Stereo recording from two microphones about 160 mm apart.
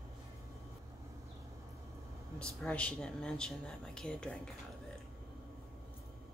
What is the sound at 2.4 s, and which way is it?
Speech, 5° left (ahead or behind).